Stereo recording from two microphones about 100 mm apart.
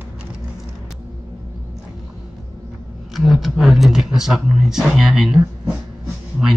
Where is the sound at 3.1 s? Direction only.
Centre (ahead or behind).